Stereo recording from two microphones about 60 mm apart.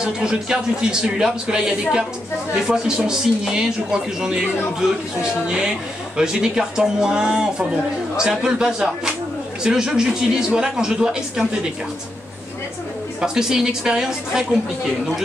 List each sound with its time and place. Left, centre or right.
0.0 s a man's voice: centre
13.2 s a man's voice: centre